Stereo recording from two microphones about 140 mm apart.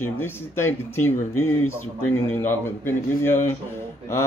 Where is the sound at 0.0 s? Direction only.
15° left (ahead or behind).